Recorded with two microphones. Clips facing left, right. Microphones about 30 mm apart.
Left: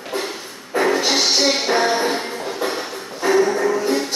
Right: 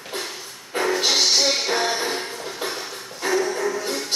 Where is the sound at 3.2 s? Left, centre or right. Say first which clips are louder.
Left 6 dB; left.